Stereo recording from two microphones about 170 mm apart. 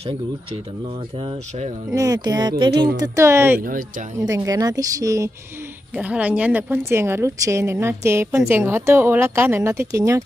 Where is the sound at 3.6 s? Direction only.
50° right (ahead or behind).